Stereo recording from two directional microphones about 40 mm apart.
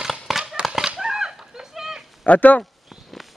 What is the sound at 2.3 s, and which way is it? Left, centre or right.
Speech, left.